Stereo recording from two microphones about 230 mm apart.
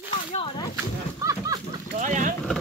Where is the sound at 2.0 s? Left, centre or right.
Right.